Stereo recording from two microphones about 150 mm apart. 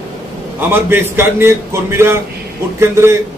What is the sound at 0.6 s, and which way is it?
A man's voice, 15° right (ahead or behind).